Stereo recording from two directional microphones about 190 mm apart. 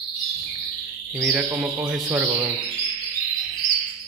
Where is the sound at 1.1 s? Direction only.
10° right (ahead or behind).